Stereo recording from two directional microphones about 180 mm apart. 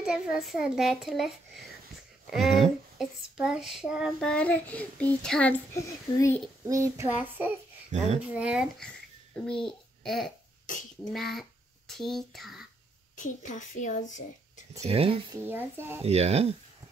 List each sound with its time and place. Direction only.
0.0 s child singing: 5° right (ahead or behind)
3.0 s child singing: 5° right (ahead or behind); by 6.4 s 15° left (ahead or behind)
6.6 s a child's voice: 15° right (ahead or behind)
7.9 s speech: 40° right (ahead or behind)
8.2 s a child's voice: 5° right (ahead or behind)
11.1 s child singing: centre (ahead or behind)
13.1 s a woman's voice: 45° left (ahead or behind)
14.8 s speech: 30° right (ahead or behind)
15.4 s a child's voice: 10° right (ahead or behind)
16.0 s speech: 35° right (ahead or behind)